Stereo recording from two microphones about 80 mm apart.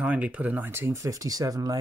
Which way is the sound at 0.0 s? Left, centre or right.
Centre.